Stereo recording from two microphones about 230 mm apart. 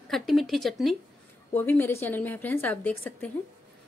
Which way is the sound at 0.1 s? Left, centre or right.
Centre.